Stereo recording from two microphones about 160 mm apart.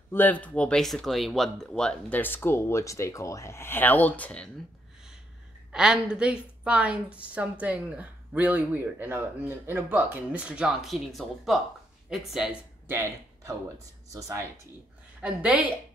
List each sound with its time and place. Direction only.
0.1 s speech: 10° left (ahead or behind)
5.7 s a woman's voice: 5° right (ahead or behind)
12.8 s speech: 15° right (ahead or behind)
15.2 s a woman's voice: 10° right (ahead or behind)